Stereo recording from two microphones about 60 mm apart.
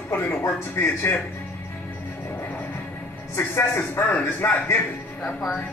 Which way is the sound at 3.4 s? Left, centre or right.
Left.